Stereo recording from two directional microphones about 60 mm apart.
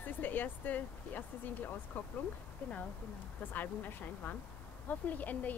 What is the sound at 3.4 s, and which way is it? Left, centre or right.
Speech, left.